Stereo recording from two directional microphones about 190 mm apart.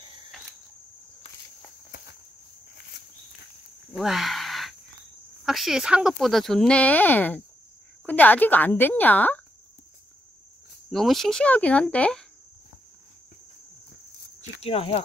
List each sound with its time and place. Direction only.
3.9 s a sound: centre (ahead or behind)
5.4 s speech: centre (ahead or behind)
10.9 s speech: centre (ahead or behind)
14.6 s speech: 30° left (ahead or behind)